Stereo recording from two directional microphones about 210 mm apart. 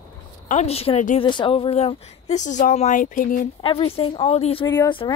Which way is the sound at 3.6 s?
25° left (ahead or behind).